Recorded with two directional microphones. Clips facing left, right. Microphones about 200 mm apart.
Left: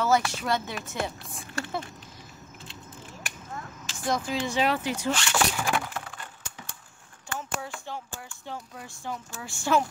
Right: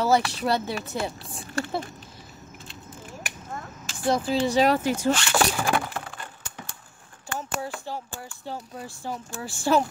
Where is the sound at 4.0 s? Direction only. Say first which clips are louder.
Right 5 dB; 30° right (ahead or behind).